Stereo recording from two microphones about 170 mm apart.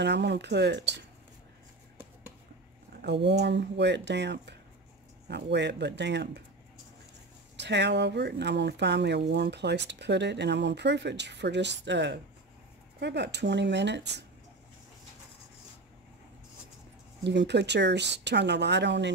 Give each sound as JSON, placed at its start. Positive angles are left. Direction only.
{"t": 0.0, "sound": "speech", "side_deg": -90}
{"t": 3.0, "sound": "speech", "side_deg": -90}
{"t": 7.5, "sound": "speech", "side_deg": -90}
{"t": 17.2, "sound": "speech", "side_deg": -90}